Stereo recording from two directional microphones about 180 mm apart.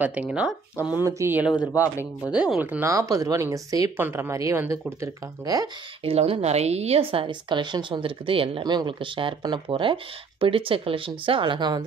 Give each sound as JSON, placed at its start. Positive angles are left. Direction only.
{"t": 0.3, "sound": "speech", "side_deg": -5}
{"t": 6.0, "sound": "a woman's voice", "side_deg": -35}